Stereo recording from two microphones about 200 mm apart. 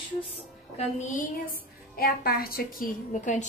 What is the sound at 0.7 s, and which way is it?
Speech, 35° left (ahead or behind).